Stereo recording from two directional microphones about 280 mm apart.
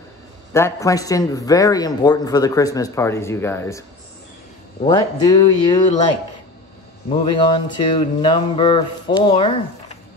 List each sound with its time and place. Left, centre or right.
0.5 s speech: centre
4.8 s speech: centre
7.1 s speech: centre